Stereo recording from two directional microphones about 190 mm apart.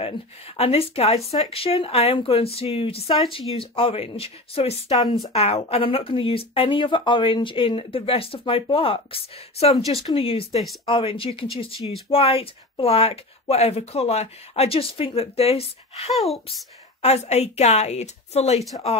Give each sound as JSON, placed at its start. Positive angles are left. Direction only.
{"t": 0.6, "sound": "speech", "side_deg": 30}
{"t": 16.1, "sound": "speech", "side_deg": 0}
{"t": 17.0, "sound": "speech", "side_deg": 35}